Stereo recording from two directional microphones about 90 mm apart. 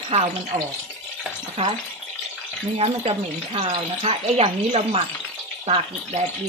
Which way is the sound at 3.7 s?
90° right.